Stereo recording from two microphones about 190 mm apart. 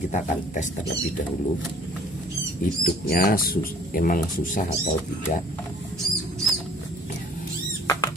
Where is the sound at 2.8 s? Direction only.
50° left (ahead or behind).